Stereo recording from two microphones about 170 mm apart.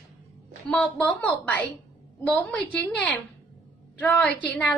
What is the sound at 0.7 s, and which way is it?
A woman's voice, 5° left (ahead or behind).